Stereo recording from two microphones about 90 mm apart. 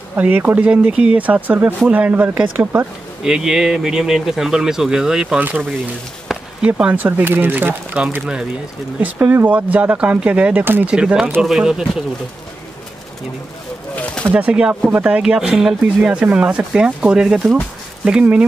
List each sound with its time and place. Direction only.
0.1 s speech: 20° right (ahead or behind)
3.3 s speech: 5° right (ahead or behind)
6.6 s speech: 15° right (ahead or behind)
9.0 s speech: 25° right (ahead or behind)
11.0 s speech: 10° right (ahead or behind)
13.9 s a sound: 10° left (ahead or behind)
14.3 s speech: 15° right (ahead or behind)